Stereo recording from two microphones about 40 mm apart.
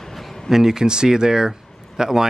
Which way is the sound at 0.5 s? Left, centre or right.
Centre.